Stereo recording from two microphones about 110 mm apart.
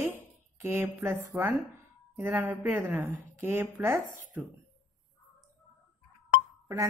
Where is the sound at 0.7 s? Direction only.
20° right (ahead or behind).